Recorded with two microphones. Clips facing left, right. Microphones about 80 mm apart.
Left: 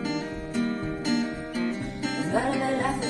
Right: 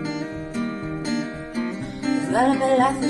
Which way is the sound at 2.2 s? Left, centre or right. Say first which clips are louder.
Right 7 dB; right.